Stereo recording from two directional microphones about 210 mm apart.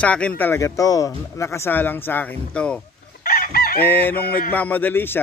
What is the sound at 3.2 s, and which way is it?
Chicken, 45° left (ahead or behind).